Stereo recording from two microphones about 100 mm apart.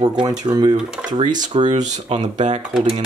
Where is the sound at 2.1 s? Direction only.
90° right.